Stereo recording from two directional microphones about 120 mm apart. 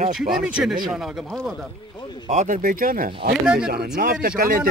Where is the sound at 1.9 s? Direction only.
40° left (ahead or behind).